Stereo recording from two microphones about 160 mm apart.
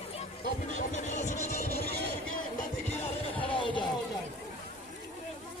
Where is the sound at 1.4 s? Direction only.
65° right (ahead or behind).